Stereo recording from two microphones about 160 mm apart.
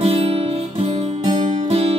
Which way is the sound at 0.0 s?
35° right (ahead or behind).